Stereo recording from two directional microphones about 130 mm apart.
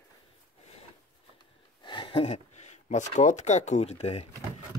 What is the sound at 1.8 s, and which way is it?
Speech, 40° left (ahead or behind).